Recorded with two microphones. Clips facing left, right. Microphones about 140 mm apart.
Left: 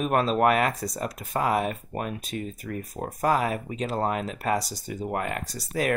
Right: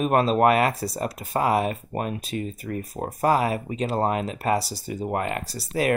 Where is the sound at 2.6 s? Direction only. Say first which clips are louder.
Right 3 dB; 30° right (ahead or behind).